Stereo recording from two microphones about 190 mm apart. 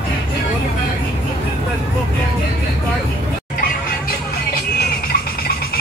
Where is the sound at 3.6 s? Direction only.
50° left (ahead or behind).